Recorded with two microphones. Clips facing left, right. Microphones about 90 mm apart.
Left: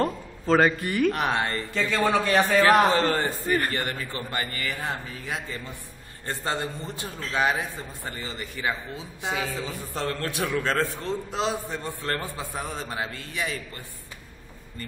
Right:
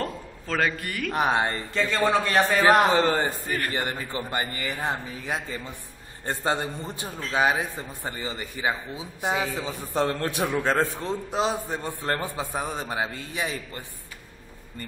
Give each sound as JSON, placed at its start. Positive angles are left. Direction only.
{"t": 0.0, "sound": "a sound", "side_deg": 20}
{"t": 0.8, "sound": "speech", "side_deg": 20}
{"t": 1.1, "sound": "a man's voice", "side_deg": -20}